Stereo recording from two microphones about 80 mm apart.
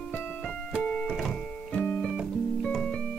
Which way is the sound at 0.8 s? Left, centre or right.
Centre.